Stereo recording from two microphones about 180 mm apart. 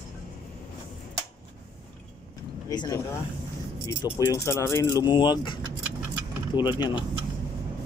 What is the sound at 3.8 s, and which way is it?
Speech, 15° left (ahead or behind).